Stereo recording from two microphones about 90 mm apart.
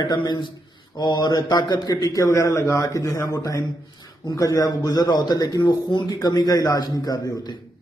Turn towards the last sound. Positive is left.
turn(degrees=45)  # may be behind; listen again after turning